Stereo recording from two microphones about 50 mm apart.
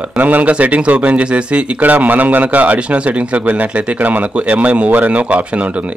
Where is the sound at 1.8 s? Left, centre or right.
Right.